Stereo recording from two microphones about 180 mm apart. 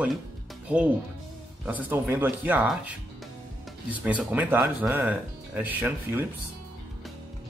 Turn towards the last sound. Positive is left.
turn(degrees=-10)  # may be behind; listen again after turning